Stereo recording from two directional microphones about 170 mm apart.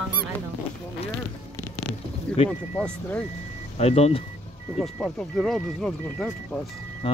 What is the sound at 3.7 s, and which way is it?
Speech, 40° left (ahead or behind).